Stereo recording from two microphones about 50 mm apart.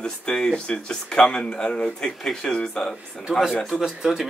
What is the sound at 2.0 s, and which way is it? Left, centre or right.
A man's voice, centre.